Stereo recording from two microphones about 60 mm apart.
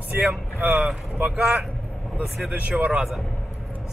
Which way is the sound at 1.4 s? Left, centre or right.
Centre.